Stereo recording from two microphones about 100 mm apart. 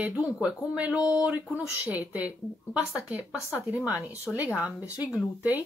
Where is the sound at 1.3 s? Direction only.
15° right (ahead or behind).